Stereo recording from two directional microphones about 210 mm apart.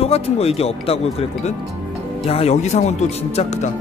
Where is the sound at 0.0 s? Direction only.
30° left (ahead or behind).